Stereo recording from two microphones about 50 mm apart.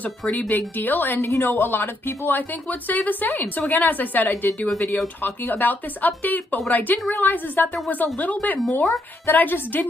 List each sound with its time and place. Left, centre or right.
0.3 s speech: left